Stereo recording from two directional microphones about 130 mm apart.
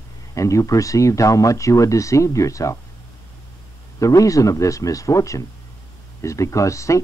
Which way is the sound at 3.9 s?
25° left (ahead or behind).